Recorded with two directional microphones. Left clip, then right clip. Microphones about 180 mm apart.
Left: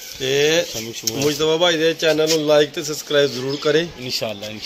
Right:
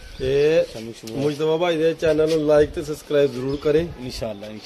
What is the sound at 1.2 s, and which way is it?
A man's voice, 15° right (ahead or behind).